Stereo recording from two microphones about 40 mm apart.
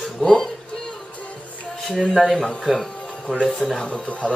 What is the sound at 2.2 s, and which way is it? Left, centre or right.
Speech, centre.